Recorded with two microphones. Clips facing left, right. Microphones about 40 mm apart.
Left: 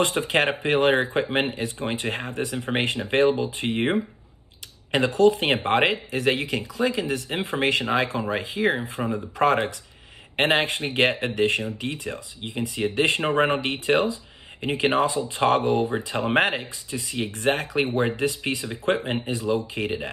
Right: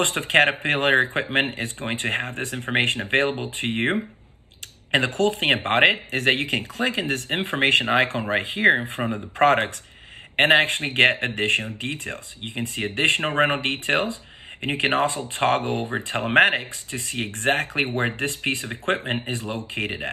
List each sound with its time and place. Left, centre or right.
0.0 s speech: right
4.9 s speech: right
19.0 s speech: right
19.3 s speech: right